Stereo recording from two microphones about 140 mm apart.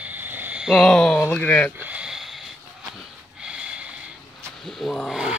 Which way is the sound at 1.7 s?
10° right (ahead or behind).